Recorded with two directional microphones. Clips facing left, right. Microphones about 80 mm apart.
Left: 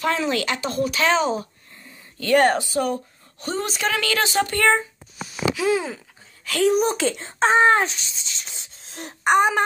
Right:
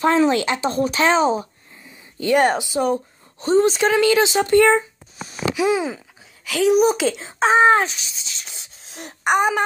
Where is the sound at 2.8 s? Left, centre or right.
Right.